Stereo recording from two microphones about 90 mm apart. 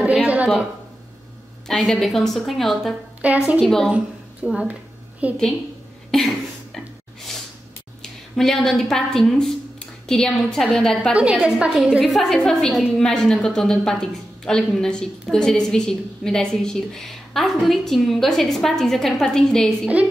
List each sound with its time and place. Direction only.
0.0 s a sound: 15° right (ahead or behind)
1.7 s a woman's voice: 5° left (ahead or behind)
3.2 s a woman's voice: 15° right (ahead or behind)
3.6 s a woman's voice: 5° left (ahead or behind)
4.5 s a woman's voice: 10° right (ahead or behind)
6.1 s a sound: 5° left (ahead or behind)
8.0 s a woman's voice: 5° left (ahead or behind)
11.1 s a woman's voice: 15° right (ahead or behind); by 19.9 s 5° left (ahead or behind)